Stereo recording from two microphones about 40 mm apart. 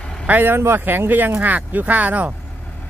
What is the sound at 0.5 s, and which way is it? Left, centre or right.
Speech, right.